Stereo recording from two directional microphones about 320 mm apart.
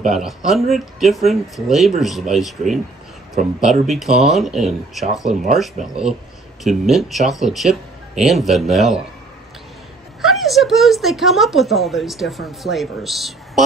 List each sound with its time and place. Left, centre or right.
0.0 s speech: centre
3.4 s speech: right
3.8 s speech: centre
5.8 s speech: right
6.6 s speech: centre
10.2 s speech: centre